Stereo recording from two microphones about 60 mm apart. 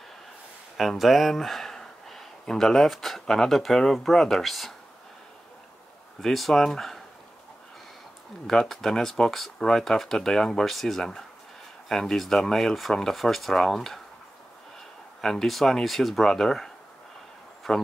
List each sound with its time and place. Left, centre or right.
0.7 s speech: centre
6.2 s speech: centre
8.5 s speech: centre
15.2 s speech: centre